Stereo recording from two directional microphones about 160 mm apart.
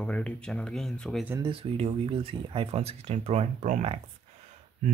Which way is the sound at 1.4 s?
35° right (ahead or behind).